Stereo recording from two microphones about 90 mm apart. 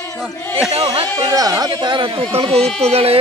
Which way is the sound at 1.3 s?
40° right (ahead or behind).